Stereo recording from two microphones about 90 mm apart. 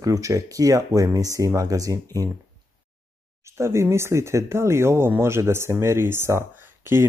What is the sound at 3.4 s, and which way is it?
Speech, 30° right (ahead or behind).